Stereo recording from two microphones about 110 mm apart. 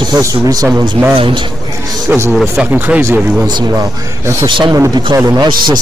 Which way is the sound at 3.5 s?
40° right (ahead or behind).